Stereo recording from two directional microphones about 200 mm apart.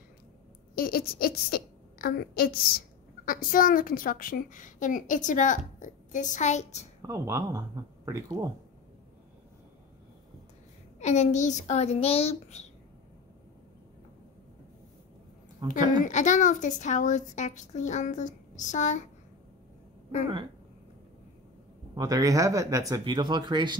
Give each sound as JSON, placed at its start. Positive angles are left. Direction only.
{"t": 0.7, "sound": "a woman's voice", "side_deg": 50}
{"t": 7.0, "sound": "speech", "side_deg": -15}
{"t": 11.0, "sound": "a woman's voice", "side_deg": 35}
{"t": 15.6, "sound": "speech", "side_deg": -25}
{"t": 16.0, "sound": "a woman's voice", "side_deg": 40}
{"t": 21.9, "sound": "speech", "side_deg": -20}